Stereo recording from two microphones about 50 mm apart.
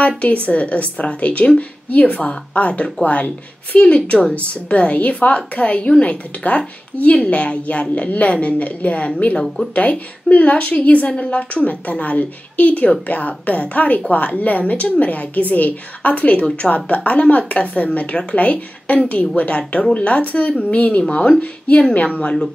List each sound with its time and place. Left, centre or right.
0.5 s a woman's voice: left
10.3 s a woman's voice: left